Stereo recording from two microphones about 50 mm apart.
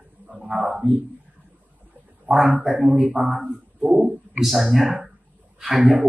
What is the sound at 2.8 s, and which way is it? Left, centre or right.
Speech, right.